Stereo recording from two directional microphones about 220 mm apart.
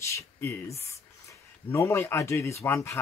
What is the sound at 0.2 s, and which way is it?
Speech, 10° left (ahead or behind).